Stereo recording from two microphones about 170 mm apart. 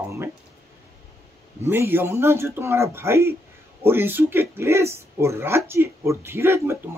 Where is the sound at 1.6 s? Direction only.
15° right (ahead or behind).